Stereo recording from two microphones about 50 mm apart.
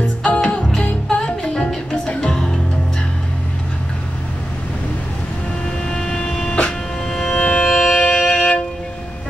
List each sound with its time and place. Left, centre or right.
0.2 s music: left
5.9 s vehicle: centre
7.1 s music: centre
7.3 s music: left